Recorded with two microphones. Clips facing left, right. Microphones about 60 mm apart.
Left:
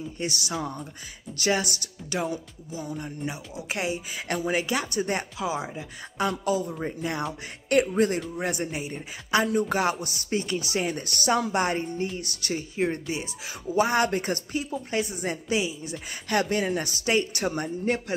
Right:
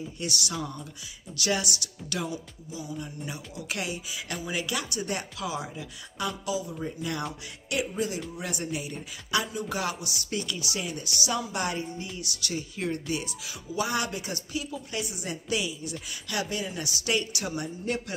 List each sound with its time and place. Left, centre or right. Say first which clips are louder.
0.2 s speech: left 3 dB; left
1.4 s music: left 3 dB; left
2.2 s music: left 4 dB; left
3.3 s speech: left 3 dB; left
4.6 s music: left 5 dB; left
7.7 s speech: left 8 dB; left
8.4 s music: left 4 dB; left